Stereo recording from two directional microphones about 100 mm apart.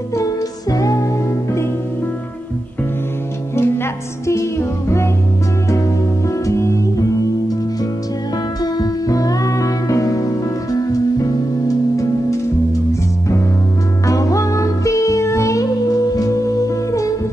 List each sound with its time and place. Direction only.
0.1 s music: 35° left (ahead or behind)
3.5 s music: 25° left (ahead or behind)
6.2 s music: 30° left (ahead or behind)
8.7 s music: 40° left (ahead or behind)
14.0 s music: 35° left (ahead or behind)